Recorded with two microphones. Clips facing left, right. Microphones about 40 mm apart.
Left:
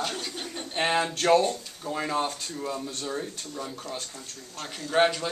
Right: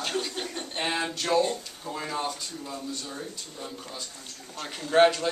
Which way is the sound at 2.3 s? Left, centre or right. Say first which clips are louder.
Left 3 dB; left.